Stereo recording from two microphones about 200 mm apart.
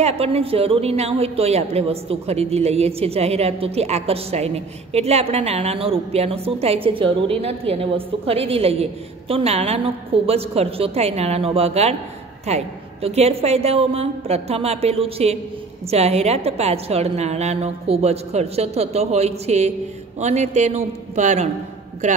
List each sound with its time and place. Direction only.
0.0 s a woman's voice: 30° right (ahead or behind)